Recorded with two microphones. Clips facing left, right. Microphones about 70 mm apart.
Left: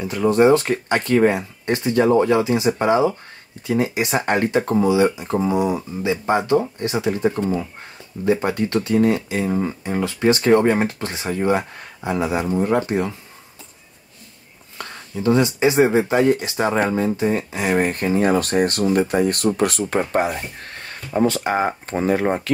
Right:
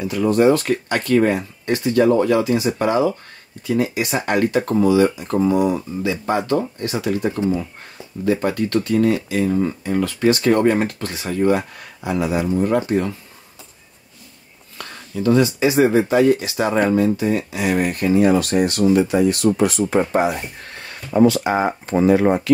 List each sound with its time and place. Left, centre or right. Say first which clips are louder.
0.3 s speech: left 1 dB; left
6.8 s speech: left 1 dB; left
14.8 s speech: right 2 dB; left
21.3 s speech: right 2 dB; left